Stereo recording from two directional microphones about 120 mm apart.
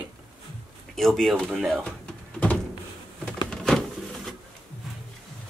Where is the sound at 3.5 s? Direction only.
5° left (ahead or behind).